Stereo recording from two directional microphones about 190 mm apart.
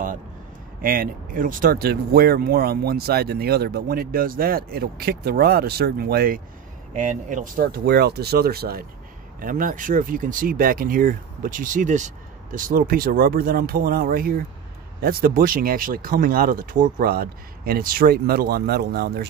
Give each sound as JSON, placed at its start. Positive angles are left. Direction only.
{"t": 0.8, "sound": "speech", "side_deg": -50}